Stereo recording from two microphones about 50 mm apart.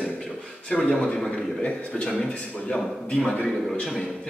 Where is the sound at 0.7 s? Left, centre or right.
Centre.